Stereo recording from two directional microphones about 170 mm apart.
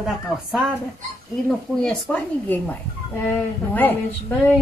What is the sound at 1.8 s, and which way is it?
Speech, 5° left (ahead or behind).